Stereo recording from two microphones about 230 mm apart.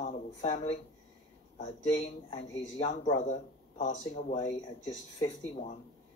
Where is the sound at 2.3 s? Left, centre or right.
Left.